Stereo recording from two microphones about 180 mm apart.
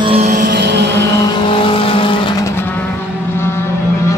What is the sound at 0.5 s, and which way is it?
Vehicle, 70° right (ahead or behind).